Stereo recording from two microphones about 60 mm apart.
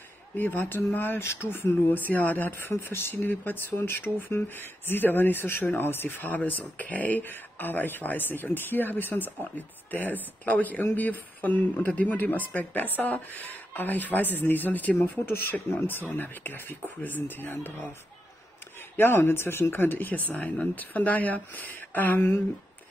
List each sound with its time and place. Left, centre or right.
0.4 s speech: left
1.2 s speech: left
15.0 s speech: left
18.9 s speech: left